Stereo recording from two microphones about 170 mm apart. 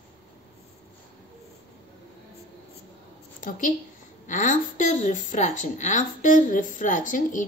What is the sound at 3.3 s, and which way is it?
A woman's voice, 50° left (ahead or behind).